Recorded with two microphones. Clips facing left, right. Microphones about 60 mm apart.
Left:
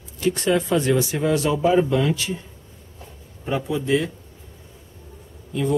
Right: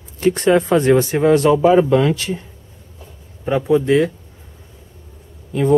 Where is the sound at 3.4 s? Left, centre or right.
Right.